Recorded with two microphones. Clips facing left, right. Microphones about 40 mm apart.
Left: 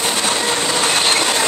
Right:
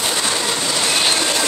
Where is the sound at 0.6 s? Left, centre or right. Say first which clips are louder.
Left 2 dB; left.